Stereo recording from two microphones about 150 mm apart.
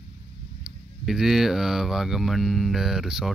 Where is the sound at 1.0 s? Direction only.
Centre (ahead or behind).